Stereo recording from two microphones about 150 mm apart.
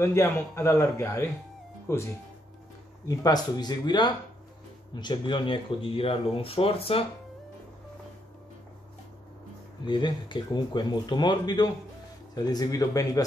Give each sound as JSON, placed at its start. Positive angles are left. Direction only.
{"t": 0.0, "sound": "a man's voice", "side_deg": 20}
{"t": 3.1, "sound": "speech", "side_deg": 25}
{"t": 9.8, "sound": "speech", "side_deg": 30}